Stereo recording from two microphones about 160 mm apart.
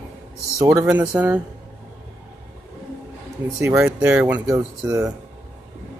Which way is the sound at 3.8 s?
5° right (ahead or behind).